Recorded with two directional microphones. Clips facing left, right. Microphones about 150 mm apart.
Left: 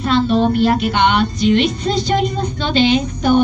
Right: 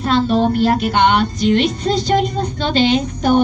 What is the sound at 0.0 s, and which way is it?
Music, 45° right (ahead or behind).